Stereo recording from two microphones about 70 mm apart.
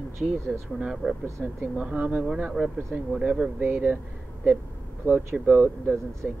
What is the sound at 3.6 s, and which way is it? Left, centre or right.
Speech, right.